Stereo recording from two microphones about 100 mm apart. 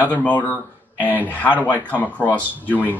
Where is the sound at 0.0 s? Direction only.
15° left (ahead or behind).